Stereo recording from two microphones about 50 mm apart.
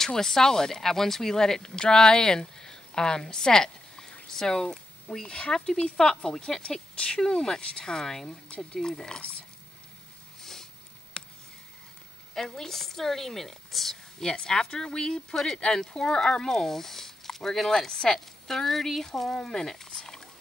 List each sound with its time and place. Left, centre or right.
0.0 s speech: centre
10.4 s a sound: centre
12.4 s a woman's voice: centre
14.3 s speech: centre